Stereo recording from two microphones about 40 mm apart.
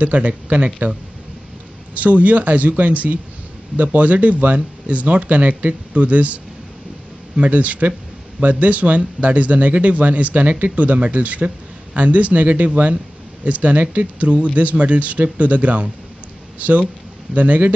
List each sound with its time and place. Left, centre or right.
0.0 s speech: right
2.0 s speech: right